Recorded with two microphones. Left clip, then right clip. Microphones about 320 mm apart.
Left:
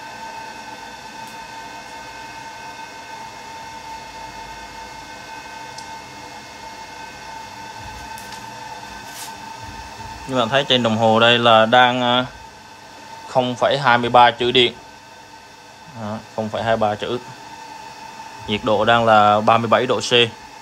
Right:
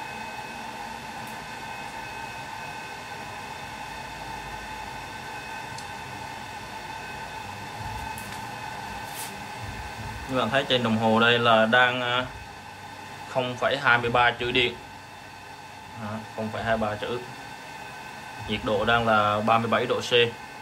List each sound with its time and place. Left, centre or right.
10.3 s a man's voice: left
13.4 s a man's voice: centre
16.5 s a man's voice: left
18.5 s a man's voice: left